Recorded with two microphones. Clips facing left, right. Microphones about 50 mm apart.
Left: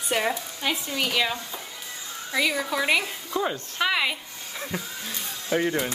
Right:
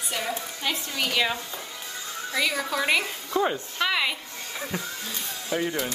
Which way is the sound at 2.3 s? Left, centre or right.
Centre.